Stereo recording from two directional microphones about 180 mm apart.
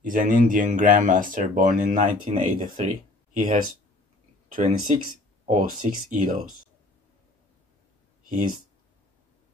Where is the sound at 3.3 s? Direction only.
50° right (ahead or behind).